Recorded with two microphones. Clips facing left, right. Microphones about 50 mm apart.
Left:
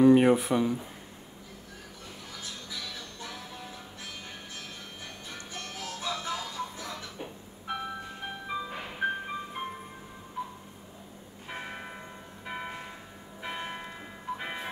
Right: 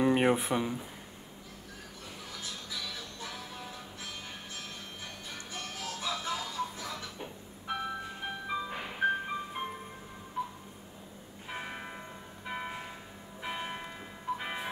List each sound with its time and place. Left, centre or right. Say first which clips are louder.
0.0 s a sound: left 6 dB; centre
0.5 s speech: left 4 dB; centre
2.4 s music: even; centre
5.3 s music: left 1 dB; centre
11.4 s church bell: left 1 dB; centre
12.4 s a sound: even; centre
13.4 s church bell: left 1 dB; centre